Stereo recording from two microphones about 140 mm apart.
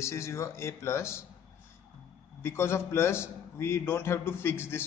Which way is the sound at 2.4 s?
15° left (ahead or behind).